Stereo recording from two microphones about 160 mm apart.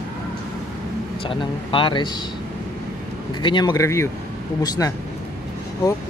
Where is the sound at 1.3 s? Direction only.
30° left (ahead or behind).